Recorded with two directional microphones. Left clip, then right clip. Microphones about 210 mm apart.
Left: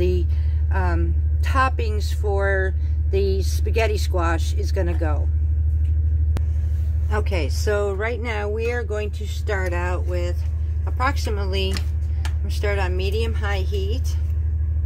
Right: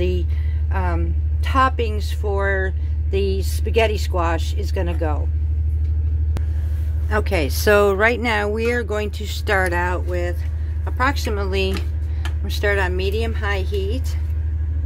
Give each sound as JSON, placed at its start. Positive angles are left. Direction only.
{"t": 0.0, "sound": "a woman's voice", "side_deg": -15}
{"t": 7.1, "sound": "a woman's voice", "side_deg": -25}